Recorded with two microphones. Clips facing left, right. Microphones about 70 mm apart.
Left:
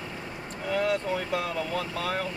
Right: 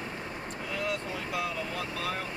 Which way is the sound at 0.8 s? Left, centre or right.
Left.